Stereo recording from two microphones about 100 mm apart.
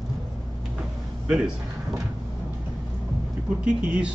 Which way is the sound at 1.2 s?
10° right (ahead or behind).